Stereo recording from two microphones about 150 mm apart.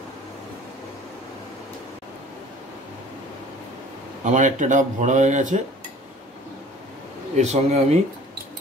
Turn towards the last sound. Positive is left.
turn(degrees=-45)  # may be behind; listen again after turning